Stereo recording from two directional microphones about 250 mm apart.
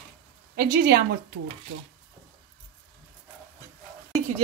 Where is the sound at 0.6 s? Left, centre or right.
Right.